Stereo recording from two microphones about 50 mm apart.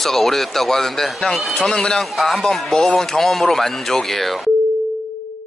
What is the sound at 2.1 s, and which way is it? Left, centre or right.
A man's voice, centre.